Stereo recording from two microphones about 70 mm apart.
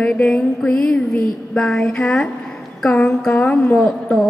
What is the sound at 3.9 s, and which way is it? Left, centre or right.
Speech, centre.